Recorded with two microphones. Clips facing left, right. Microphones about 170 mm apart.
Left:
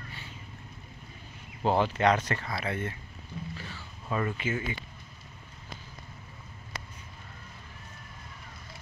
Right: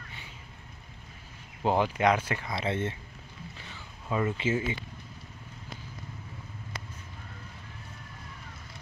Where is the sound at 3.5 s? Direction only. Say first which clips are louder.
Left 4 dB; 15° right (ahead or behind).